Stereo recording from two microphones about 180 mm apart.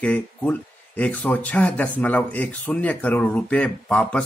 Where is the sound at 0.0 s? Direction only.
10° left (ahead or behind).